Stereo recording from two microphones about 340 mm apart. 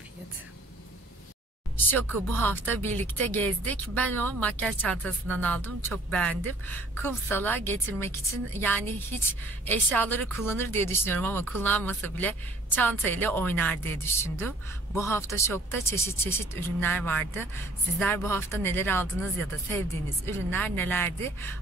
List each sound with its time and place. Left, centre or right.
1.9 s a woman's voice: centre
20.2 s a woman's voice: centre